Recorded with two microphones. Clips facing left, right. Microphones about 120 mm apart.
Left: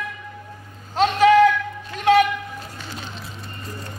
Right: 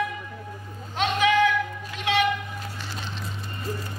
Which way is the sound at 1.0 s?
35° left (ahead or behind).